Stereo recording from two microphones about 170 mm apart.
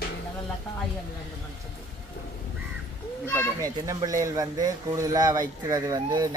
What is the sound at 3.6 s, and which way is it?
Speech, 20° right (ahead or behind).